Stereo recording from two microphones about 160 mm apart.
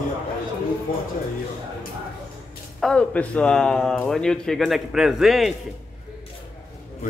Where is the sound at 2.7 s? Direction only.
5° left (ahead or behind).